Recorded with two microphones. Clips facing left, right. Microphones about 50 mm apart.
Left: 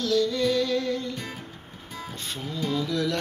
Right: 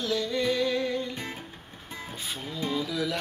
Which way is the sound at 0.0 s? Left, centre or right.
Centre.